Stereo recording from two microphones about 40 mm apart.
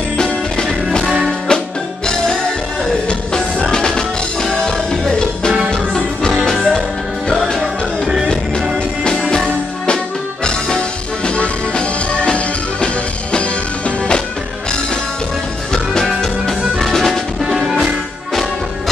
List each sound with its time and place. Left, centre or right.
0.7 s music: centre
1.5 s music: centre
3.7 s music: centre
10.4 s music: left
16.2 s music: centre
16.8 s music: centre